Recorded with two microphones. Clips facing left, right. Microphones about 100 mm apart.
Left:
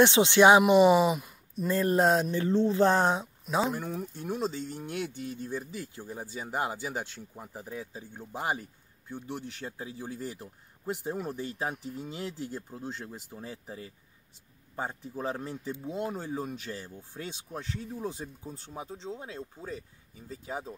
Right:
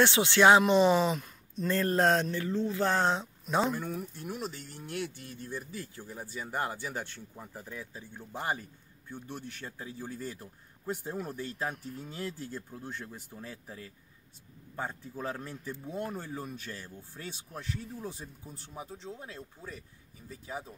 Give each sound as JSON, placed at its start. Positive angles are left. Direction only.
{"t": 0.0, "sound": "speech", "side_deg": 20}
{"t": 2.3, "sound": "speech", "side_deg": 25}
{"t": 3.4, "sound": "speech", "side_deg": 0}
{"t": 4.0, "sound": "speech", "side_deg": 25}